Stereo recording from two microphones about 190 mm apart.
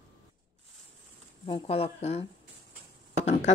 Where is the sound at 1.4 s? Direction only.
30° left (ahead or behind).